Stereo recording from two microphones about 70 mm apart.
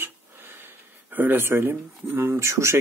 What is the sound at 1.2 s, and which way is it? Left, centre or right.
Speech, right.